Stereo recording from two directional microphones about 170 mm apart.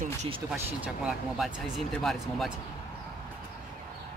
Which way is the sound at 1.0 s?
Centre (ahead or behind).